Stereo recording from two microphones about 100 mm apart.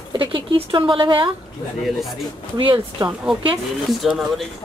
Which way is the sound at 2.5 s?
60° right (ahead or behind).